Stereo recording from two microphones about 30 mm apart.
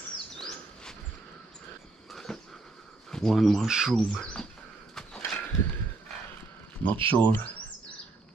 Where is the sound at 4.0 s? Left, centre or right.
Left.